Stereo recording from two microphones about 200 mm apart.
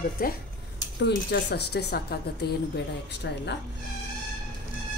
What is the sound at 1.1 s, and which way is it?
Speech, 55° left (ahead or behind).